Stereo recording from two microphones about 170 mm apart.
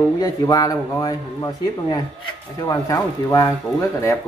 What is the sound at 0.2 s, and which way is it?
A man's voice, 20° left (ahead or behind).